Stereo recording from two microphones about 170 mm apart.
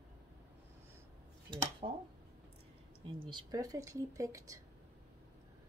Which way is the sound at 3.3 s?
20° right (ahead or behind).